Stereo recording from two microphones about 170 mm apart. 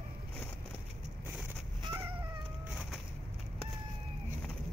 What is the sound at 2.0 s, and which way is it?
Cat, 10° right (ahead or behind).